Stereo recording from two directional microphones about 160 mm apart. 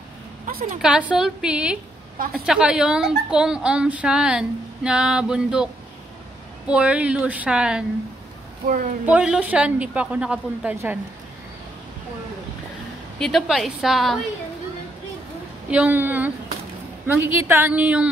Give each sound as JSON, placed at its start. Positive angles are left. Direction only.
{"t": 0.5, "sound": "a woman's voice", "side_deg": -65}
{"t": 0.8, "sound": "a woman's voice", "side_deg": -5}
{"t": 6.7, "sound": "a woman's voice", "side_deg": -5}
{"t": 9.0, "sound": "a woman's voice", "side_deg": -5}
{"t": 13.2, "sound": "a woman's voice", "side_deg": 0}
{"t": 15.7, "sound": "a woman's voice", "side_deg": -10}